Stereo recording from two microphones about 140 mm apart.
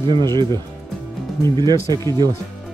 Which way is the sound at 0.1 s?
30° right (ahead or behind).